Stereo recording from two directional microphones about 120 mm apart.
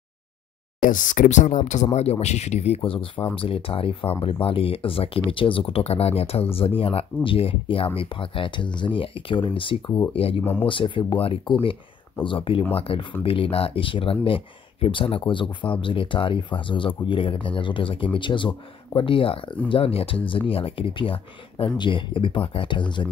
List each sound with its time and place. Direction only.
0.8 s speech: 90° left
2.0 s speech: 65° left (ahead or behind); by 23.0 s 40° left (ahead or behind)